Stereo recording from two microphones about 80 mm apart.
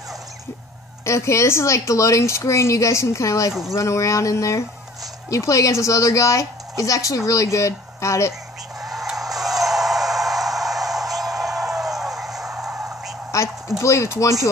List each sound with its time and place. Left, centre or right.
1.0 s speech: left
8.8 s music: centre
13.3 s duck: left
13.7 s speech: left